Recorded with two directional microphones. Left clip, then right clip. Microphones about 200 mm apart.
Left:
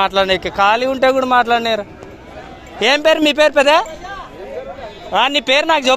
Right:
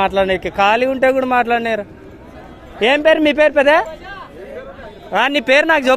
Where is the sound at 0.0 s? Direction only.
5° right (ahead or behind).